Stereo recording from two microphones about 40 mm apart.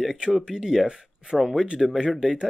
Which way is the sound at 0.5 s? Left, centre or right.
Centre.